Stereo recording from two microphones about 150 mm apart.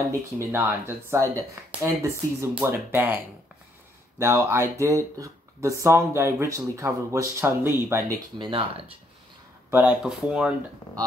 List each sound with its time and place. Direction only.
0.4 s speech: 15° right (ahead or behind)
4.2 s speech: 20° right (ahead or behind)
8.4 s speech: 35° right (ahead or behind)
9.7 s speech: 10° right (ahead or behind)